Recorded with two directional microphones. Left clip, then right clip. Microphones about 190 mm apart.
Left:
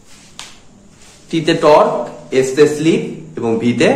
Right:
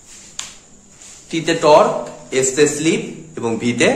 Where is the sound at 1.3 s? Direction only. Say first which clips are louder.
Left 2 dB; centre (ahead or behind).